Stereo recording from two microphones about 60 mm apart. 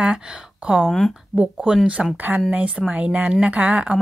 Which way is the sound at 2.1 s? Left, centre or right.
Right.